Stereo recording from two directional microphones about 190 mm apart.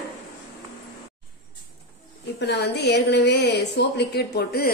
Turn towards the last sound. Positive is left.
turn(degrees=55)  # may be behind; listen again after turning